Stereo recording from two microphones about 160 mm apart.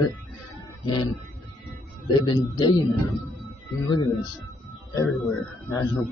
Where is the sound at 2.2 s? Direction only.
30° left (ahead or behind).